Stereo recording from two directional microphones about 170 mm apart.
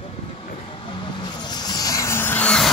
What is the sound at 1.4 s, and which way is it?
Vehicle, 25° left (ahead or behind).